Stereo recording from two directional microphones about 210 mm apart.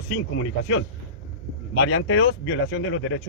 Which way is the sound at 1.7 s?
75° left (ahead or behind).